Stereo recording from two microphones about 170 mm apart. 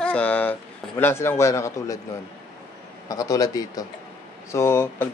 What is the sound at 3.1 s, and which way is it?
A man's voice, 20° left (ahead or behind).